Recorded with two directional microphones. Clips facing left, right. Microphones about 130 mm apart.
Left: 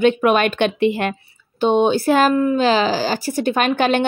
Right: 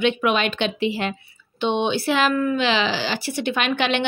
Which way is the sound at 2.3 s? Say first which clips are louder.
Left 4 dB; 30° left (ahead or behind).